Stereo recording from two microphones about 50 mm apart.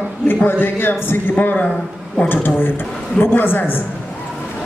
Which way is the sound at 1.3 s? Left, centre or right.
Left.